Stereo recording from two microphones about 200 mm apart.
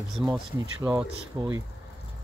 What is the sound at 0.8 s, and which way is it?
Speech, 15° right (ahead or behind).